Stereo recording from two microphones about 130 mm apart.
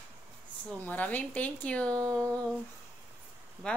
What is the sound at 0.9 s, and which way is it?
Speech, 10° left (ahead or behind).